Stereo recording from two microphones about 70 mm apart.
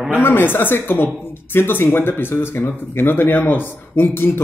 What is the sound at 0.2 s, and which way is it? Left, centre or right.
Speech, left.